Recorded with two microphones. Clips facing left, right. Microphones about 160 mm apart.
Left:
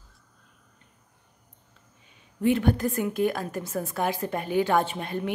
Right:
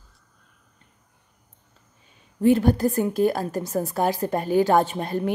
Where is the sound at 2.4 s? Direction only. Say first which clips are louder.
Right 5 dB; 35° right (ahead or behind).